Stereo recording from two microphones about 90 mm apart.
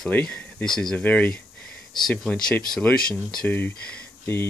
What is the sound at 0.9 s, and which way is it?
Speech, 20° left (ahead or behind).